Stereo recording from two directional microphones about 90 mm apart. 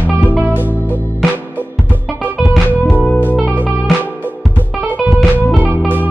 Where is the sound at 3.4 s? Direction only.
15° right (ahead or behind).